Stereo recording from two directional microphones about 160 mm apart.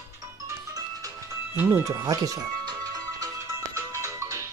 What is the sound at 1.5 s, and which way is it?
Music, 15° right (ahead or behind).